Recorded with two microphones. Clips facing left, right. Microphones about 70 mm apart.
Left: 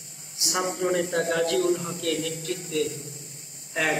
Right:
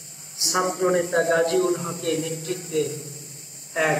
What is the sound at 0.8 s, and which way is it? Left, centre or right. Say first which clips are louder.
A man's voice: right 4 dB; right.